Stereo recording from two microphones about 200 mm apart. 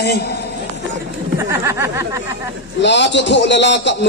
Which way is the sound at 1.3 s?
15° right (ahead or behind).